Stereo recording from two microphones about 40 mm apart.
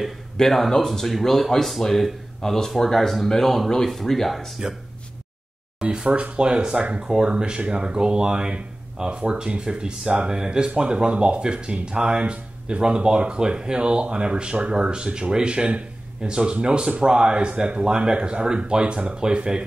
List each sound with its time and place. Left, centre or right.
0.4 s speech: centre
6.0 s speech: right
6.3 s speech: right